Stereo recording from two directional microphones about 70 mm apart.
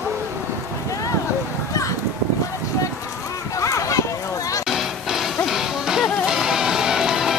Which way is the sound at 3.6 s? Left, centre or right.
Left.